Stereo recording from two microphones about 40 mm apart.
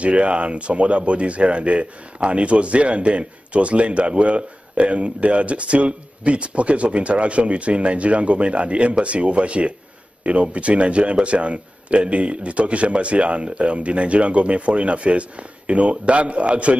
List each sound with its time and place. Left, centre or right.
0.0 s speech: right